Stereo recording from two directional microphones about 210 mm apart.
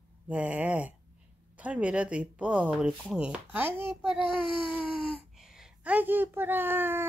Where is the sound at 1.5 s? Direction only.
5° right (ahead or behind).